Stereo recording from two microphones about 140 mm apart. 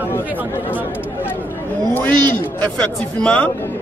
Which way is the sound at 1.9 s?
15° left (ahead or behind).